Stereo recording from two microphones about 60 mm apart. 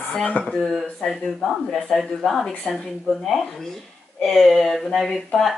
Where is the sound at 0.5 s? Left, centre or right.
Centre.